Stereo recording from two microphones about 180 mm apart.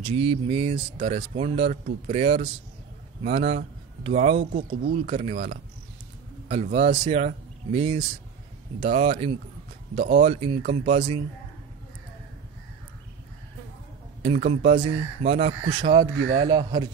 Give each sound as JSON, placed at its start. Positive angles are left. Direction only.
{"t": 0.0, "sound": "speech", "side_deg": -30}
{"t": 4.6, "sound": "speech", "side_deg": -50}
{"t": 4.9, "sound": "speech", "side_deg": -35}
{"t": 6.5, "sound": "speech", "side_deg": -35}
{"t": 14.2, "sound": "speech", "side_deg": -35}